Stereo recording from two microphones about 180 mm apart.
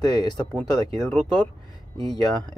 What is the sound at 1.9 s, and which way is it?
Speech, 20° left (ahead or behind).